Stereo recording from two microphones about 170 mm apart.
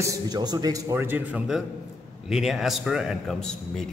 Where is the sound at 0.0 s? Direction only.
25° right (ahead or behind); by 3.8 s 5° left (ahead or behind).